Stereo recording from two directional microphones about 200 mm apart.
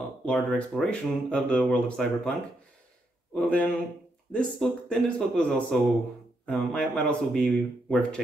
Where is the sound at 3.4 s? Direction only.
5° left (ahead or behind).